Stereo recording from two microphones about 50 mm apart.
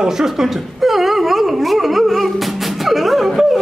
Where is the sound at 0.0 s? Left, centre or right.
Centre.